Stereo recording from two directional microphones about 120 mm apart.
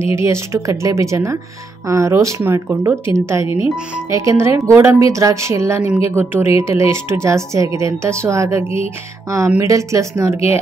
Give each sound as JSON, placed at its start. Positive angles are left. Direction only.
{"t": 0.0, "sound": "a woman's voice", "side_deg": -25}
{"t": 8.6, "sound": "music", "side_deg": 55}
{"t": 9.6, "sound": "a woman's voice", "side_deg": -25}